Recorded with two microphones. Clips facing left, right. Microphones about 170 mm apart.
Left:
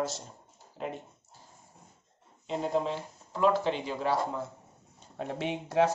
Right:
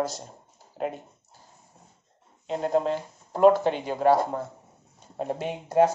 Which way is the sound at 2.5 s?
45° right (ahead or behind).